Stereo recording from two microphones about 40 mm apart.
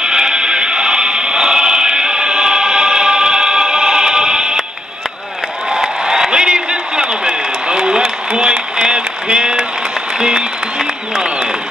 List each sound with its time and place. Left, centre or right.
0.0 s music: centre
6.3 s a sound: centre
10.1 s music: centre